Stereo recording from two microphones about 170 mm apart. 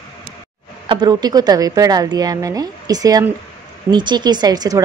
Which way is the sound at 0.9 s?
25° right (ahead or behind).